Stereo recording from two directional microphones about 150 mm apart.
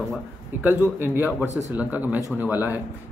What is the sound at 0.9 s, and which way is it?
Speech, 15° right (ahead or behind).